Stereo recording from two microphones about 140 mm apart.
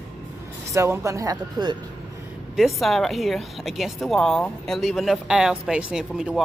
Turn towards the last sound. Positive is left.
turn(degrees=-5)  # may be behind; listen again after turning